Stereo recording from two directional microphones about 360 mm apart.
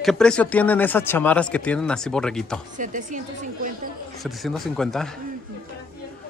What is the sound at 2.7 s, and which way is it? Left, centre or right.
A woman's voice, right.